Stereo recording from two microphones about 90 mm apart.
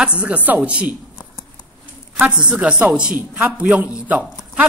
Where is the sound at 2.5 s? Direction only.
10° right (ahead or behind).